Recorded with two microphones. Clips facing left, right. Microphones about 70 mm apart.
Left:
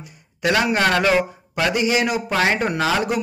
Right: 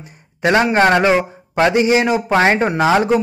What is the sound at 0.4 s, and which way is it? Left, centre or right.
A man's voice, right.